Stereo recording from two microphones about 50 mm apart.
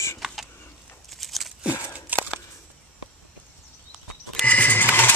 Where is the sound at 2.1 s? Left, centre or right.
Right.